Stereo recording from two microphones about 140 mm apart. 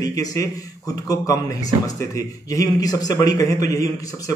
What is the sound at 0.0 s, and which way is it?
Speech, 25° left (ahead or behind).